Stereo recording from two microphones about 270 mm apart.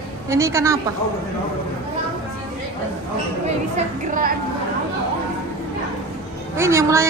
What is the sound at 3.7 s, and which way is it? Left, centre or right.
Speech, right.